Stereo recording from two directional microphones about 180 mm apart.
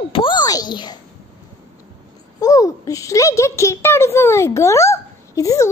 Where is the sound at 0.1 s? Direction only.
25° left (ahead or behind).